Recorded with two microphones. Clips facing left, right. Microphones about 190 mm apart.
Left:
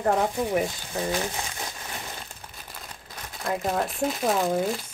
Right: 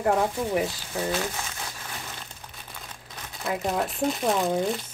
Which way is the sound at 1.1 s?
20° left (ahead or behind).